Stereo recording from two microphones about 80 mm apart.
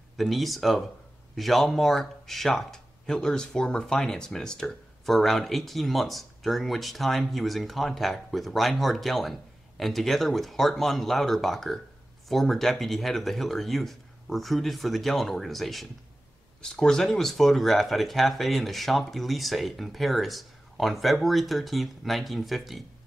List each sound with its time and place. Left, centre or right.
0.2 s speech: centre